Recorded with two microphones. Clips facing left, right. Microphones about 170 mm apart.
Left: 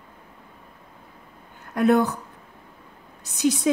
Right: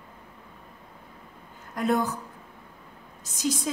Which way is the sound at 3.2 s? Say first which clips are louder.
Left 6 dB; 65° left (ahead or behind).